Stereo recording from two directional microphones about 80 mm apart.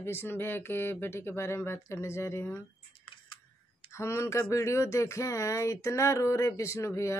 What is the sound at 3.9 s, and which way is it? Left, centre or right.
Speech, left.